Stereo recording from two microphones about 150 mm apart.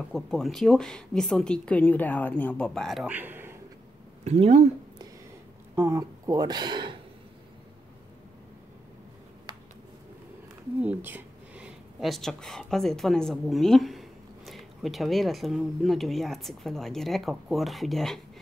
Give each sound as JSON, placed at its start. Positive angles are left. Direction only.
{"t": 0.1, "sound": "a woman's voice", "side_deg": 5}
{"t": 3.1, "sound": "speech", "side_deg": -10}
{"t": 4.2, "sound": "speech", "side_deg": -45}
{"t": 5.8, "sound": "speech", "side_deg": -20}
{"t": 10.8, "sound": "speech", "side_deg": -10}